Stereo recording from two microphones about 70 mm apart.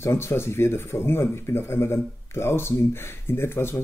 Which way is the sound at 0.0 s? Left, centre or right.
Left.